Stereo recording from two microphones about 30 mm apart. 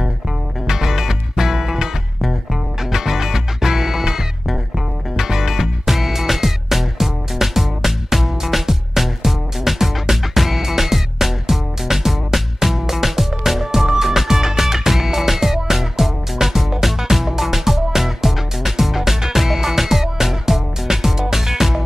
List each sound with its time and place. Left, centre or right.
0.7 s music: centre